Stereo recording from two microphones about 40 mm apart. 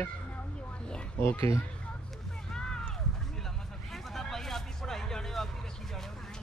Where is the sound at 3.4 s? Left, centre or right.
Centre.